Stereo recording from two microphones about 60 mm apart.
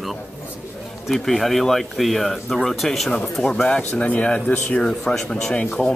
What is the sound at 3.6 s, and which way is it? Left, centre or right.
Speech, centre.